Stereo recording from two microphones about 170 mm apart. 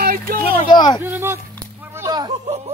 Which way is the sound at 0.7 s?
25° left (ahead or behind).